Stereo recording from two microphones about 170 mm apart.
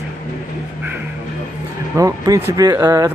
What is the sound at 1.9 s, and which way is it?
Speech, 20° right (ahead or behind).